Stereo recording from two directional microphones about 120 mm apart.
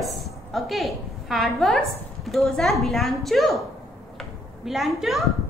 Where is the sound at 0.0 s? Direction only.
Centre (ahead or behind).